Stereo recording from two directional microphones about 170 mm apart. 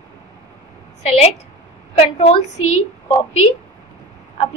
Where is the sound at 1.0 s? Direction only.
40° left (ahead or behind).